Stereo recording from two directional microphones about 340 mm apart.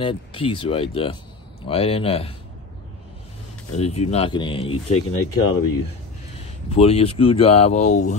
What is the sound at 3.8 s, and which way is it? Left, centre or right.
Speech, centre.